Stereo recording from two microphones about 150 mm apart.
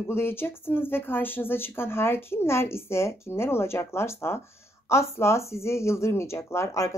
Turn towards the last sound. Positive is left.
turn(degrees=20)  # may be behind; listen again after turning